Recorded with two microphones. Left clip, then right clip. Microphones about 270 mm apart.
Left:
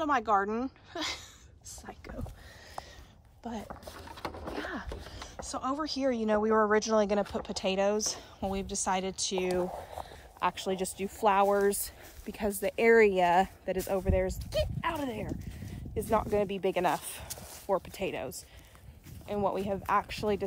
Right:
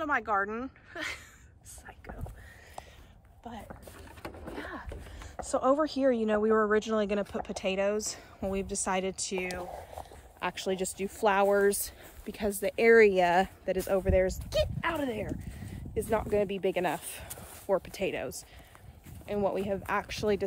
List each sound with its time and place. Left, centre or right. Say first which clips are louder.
0.0 s speech: left 2 dB; centre
3.6 s a sound: left 4 dB; centre
5.0 s speech: even; centre